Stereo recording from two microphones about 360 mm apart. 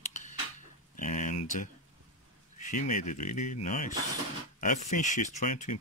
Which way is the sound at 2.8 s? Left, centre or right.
Left.